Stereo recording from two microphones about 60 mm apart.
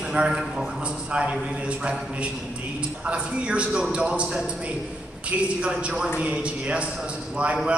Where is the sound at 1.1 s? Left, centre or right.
Centre.